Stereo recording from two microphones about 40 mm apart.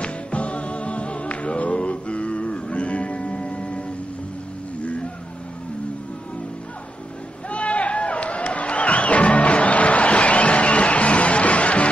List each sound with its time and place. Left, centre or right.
0.0 s music: left
4.8 s vehicle: left
7.4 s music: left